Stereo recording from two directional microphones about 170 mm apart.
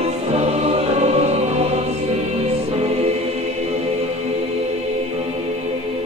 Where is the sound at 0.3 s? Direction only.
35° right (ahead or behind).